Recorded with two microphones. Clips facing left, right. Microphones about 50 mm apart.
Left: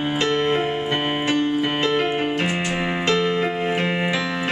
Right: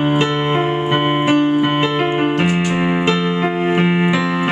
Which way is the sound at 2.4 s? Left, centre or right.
Centre.